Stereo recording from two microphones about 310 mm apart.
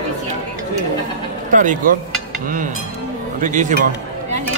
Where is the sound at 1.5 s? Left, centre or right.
Right.